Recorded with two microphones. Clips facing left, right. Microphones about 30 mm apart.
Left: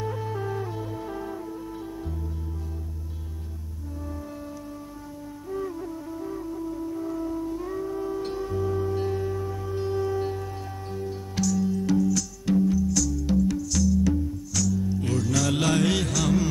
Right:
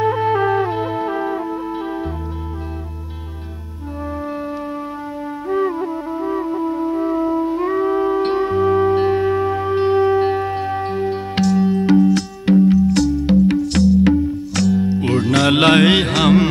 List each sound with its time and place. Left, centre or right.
0.0 s music: right
5.5 s music: right